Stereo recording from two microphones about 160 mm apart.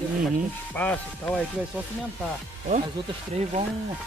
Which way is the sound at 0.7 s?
10° left (ahead or behind).